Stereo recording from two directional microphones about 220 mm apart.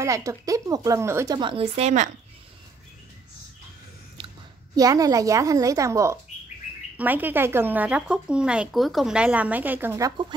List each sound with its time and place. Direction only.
0.0 s speech: 15° right (ahead or behind)
4.2 s a sound: 25° right (ahead or behind)
4.7 s speech: 15° right (ahead or behind)